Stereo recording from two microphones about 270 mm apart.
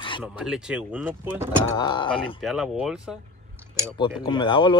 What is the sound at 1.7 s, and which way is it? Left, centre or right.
Speech, centre.